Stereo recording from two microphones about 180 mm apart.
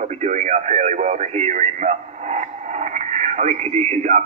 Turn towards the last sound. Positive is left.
turn(degrees=-40)  # may be behind; listen again after turning